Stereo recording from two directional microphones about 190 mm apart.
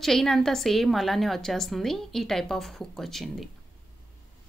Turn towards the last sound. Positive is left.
turn(degrees=0)  # may be behind; listen again after turning